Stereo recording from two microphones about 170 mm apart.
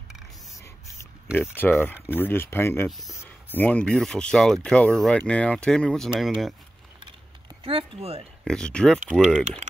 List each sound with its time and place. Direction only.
1.3 s speech: 15° left (ahead or behind)
7.6 s speech: 35° right (ahead or behind)
8.5 s speech: 5° left (ahead or behind)